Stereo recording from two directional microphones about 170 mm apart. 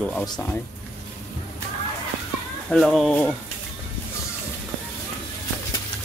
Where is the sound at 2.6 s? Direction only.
Centre (ahead or behind).